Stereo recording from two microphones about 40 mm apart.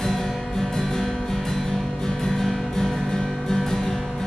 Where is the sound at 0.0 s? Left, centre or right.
Centre.